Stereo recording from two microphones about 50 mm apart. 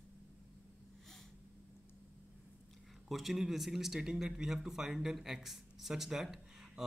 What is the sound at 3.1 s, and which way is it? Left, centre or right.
A man's voice, centre.